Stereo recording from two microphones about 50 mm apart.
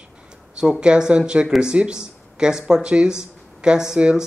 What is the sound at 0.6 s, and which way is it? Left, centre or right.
Speech, centre.